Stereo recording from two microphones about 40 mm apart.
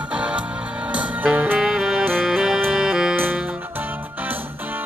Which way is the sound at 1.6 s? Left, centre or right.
Centre.